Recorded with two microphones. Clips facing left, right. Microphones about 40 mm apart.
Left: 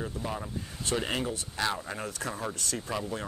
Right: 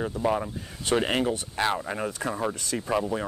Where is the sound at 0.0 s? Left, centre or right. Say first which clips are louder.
Right 9 dB; right.